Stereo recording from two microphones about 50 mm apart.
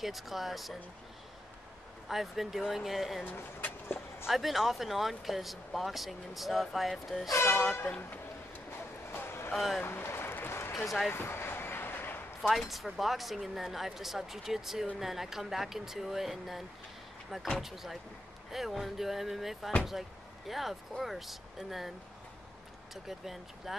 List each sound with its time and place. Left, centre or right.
0.0 s speech: centre
2.0 s speech: centre
3.3 s a sound: left
4.3 s speech: centre
7.3 s speech: left
8.1 s a sound: left
12.4 s speech: centre
23.0 s speech: centre